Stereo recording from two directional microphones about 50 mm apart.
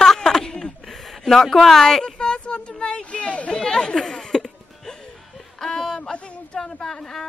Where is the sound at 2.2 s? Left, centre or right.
Left.